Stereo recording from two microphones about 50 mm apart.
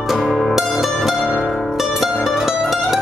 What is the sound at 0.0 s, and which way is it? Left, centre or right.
Music, centre.